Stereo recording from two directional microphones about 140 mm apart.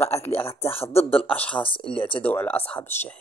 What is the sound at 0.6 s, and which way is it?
Speech, 45° left (ahead or behind).